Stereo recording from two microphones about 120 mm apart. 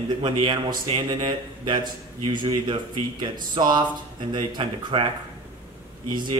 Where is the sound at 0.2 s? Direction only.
45° right (ahead or behind).